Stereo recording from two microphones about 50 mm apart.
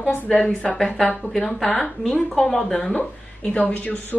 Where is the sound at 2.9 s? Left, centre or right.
Left.